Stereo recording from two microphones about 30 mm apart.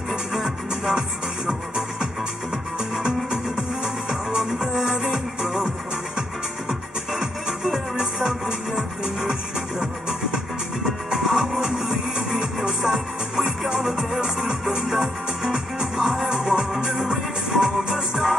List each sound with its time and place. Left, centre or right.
0.3 s music: centre
6.7 s music: centre
16.9 s music: centre